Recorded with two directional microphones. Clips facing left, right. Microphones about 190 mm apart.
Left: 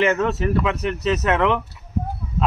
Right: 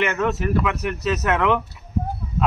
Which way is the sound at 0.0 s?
30° left (ahead or behind).